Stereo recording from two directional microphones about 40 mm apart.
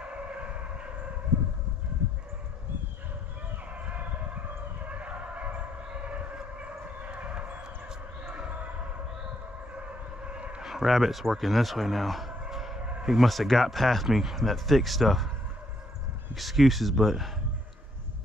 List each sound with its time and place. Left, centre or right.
0.1 s train: right
3.8 s vehicle: right
4.8 s a sound: right
9.8 s siren: right
10.6 s speech: centre
12.3 s a sound: centre
13.0 s speech: centre
13.3 s speech: centre
16.3 s speech: centre